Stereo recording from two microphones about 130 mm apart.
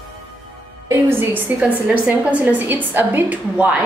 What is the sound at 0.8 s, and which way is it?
A woman's voice, 20° right (ahead or behind).